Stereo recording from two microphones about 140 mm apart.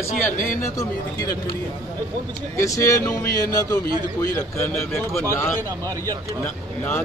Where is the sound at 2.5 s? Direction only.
20° left (ahead or behind).